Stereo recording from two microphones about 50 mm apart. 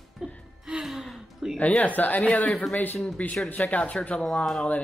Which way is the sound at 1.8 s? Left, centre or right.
Left.